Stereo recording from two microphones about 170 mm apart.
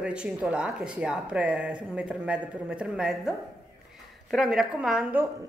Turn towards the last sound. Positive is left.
turn(degrees=-5)  # may be behind; listen again after turning